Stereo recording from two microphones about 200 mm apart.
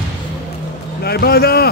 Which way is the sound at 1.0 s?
50° left (ahead or behind).